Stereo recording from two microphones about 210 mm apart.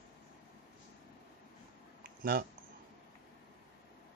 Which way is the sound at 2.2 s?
45° right (ahead or behind).